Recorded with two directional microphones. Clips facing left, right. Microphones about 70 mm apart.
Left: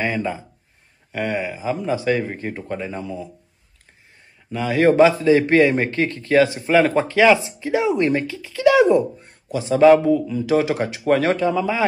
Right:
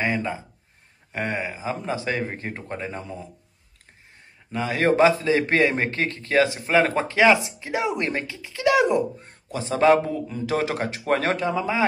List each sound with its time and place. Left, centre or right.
1.1 s a man's voice: right
4.5 s a man's voice: right
9.5 s a man's voice: right